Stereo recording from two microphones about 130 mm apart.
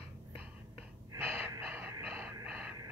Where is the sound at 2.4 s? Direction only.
10° right (ahead or behind).